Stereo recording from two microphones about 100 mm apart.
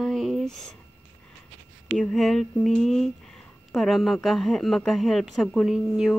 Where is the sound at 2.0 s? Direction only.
5° left (ahead or behind).